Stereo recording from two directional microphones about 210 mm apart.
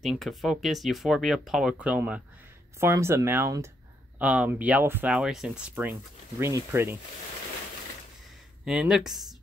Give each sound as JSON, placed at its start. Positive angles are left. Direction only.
{"t": 0.0, "sound": "speech", "side_deg": 0}
{"t": 8.6, "sound": "speech", "side_deg": -5}